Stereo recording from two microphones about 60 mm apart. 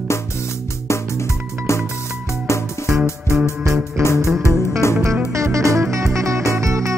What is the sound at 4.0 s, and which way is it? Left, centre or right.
Music, left.